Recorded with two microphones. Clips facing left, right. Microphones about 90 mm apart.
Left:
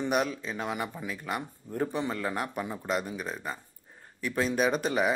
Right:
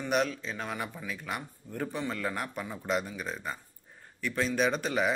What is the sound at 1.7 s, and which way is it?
A man's voice, 20° left (ahead or behind).